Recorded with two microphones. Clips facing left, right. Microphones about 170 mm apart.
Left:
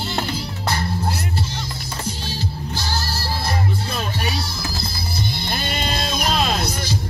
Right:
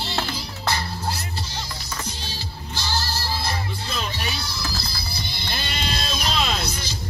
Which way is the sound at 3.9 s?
50° left (ahead or behind).